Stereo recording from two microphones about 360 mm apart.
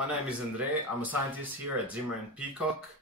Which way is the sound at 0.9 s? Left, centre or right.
Centre.